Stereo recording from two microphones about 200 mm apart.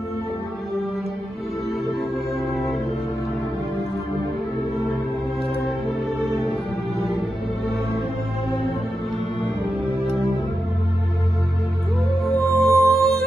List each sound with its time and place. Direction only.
12.4 s music: 15° right (ahead or behind)
12.9 s music: centre (ahead or behind)